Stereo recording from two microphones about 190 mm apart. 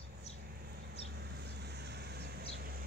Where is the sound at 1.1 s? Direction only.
60° right (ahead or behind).